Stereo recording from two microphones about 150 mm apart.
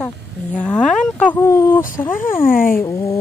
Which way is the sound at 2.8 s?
20° left (ahead or behind).